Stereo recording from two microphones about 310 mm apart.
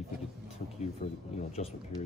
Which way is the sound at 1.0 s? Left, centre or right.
Left.